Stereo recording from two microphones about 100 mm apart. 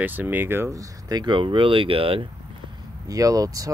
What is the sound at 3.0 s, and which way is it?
Speech, 35° right (ahead or behind).